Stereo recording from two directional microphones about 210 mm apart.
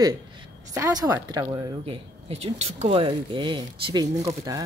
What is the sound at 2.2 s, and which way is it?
Speech, 30° right (ahead or behind).